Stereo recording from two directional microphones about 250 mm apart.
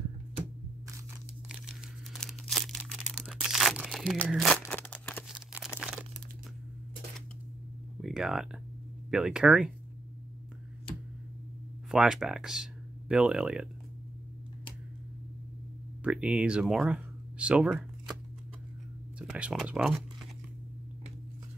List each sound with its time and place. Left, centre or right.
1.5 s crumpling: centre
5.3 s a sound: centre
5.8 s crumpling: centre
8.0 s a sound: centre
9.1 s speech: centre
11.9 s speech: centre
16.0 s speech: centre
19.1 s speech: centre